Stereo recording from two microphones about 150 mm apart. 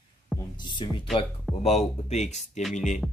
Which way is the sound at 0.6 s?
30° left (ahead or behind).